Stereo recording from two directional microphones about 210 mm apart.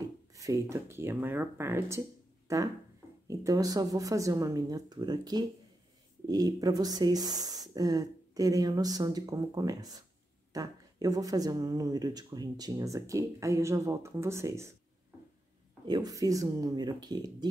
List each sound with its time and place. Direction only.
0.3 s speech: 15° right (ahead or behind)
15.8 s speech: 20° right (ahead or behind)